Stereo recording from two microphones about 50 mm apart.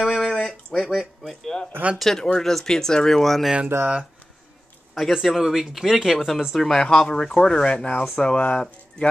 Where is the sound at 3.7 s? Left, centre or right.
Right.